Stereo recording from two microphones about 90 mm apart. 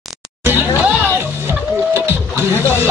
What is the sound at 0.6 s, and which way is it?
Chatter, 20° right (ahead or behind).